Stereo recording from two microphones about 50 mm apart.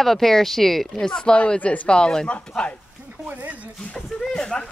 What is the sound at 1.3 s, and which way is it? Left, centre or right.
Speech, left.